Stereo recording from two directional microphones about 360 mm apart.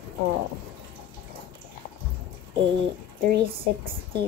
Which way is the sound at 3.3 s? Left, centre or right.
Right.